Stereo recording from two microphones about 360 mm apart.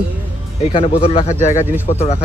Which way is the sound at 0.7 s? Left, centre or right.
Centre.